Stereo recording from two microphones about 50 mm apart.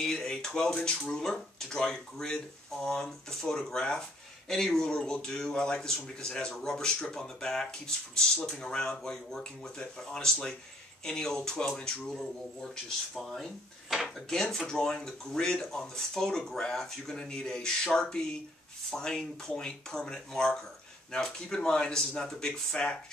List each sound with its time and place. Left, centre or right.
0.0 s speech: centre